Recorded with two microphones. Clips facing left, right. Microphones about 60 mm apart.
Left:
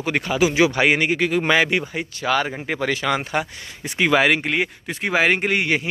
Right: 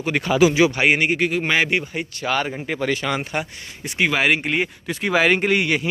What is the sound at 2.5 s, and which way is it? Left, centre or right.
Speech, left.